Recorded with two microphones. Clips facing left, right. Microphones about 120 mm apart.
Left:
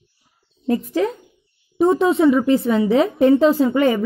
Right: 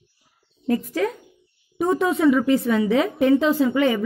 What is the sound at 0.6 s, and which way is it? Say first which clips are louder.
A woman's voice: left 3 dB; 25° left (ahead or behind).